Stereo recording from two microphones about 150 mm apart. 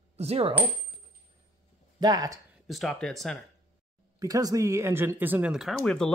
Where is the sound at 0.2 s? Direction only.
45° right (ahead or behind).